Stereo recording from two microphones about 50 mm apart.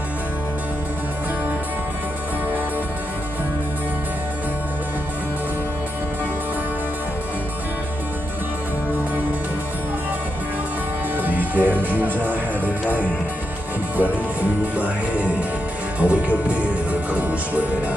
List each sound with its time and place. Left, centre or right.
11.1 s music: right
13.9 s music: right
16.0 s speech: right
17.1 s music: right